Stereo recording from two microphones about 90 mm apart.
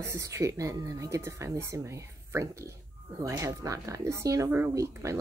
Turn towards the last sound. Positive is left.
turn(degrees=-35)  # may be behind; listen again after turning